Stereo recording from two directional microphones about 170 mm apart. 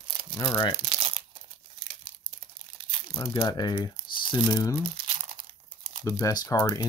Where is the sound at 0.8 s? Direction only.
30° right (ahead or behind).